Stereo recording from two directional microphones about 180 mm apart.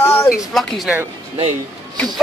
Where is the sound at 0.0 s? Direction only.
15° left (ahead or behind).